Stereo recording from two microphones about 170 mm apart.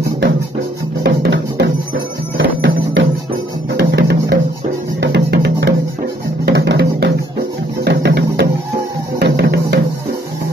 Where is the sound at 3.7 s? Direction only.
75° right (ahead or behind).